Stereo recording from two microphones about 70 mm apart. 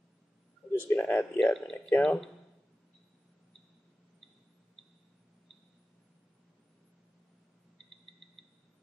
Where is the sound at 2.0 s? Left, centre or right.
Centre.